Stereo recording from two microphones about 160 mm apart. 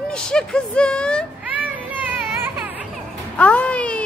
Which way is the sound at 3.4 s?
10° left (ahead or behind).